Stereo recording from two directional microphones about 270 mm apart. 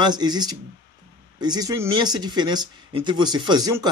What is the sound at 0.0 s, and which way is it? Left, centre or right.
Speech, centre.